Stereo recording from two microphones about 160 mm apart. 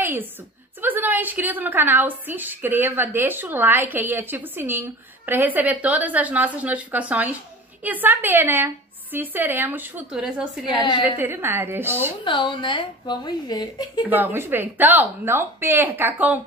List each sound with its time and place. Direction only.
0.0 s a sound: 10° right (ahead or behind)
0.7 s a woman's voice: 10° right (ahead or behind)
10.8 s a woman's voice: 30° left (ahead or behind)
11.1 s a woman's voice: 15° right (ahead or behind)
12.3 s a woman's voice: 30° left (ahead or behind)
14.0 s a woman's voice: 10° right (ahead or behind)